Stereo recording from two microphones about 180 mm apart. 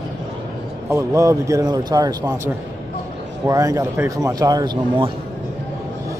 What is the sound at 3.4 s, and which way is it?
Speech, 20° right (ahead or behind).